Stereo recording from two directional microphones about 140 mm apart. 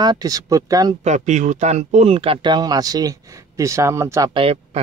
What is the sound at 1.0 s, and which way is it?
Speech, 60° right (ahead or behind).